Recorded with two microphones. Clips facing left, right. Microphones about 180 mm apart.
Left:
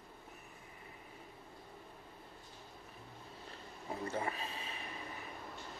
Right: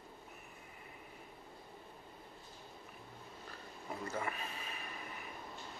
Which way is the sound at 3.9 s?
30° left (ahead or behind).